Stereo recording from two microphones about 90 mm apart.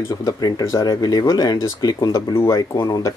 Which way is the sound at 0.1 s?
45° left (ahead or behind).